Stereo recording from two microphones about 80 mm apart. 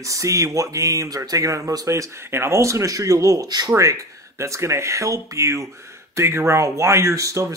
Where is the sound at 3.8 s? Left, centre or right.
Right.